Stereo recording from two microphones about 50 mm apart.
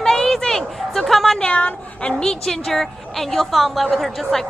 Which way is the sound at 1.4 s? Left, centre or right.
Left.